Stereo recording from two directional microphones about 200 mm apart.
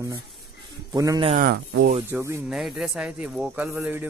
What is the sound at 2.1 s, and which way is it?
Speech, 15° right (ahead or behind).